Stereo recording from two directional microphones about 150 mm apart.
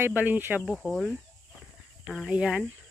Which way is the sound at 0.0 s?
10° right (ahead or behind).